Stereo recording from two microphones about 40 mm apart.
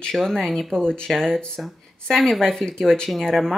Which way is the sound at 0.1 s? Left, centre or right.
Centre.